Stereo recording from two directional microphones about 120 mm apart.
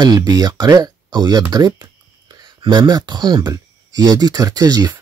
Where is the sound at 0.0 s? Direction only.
35° right (ahead or behind).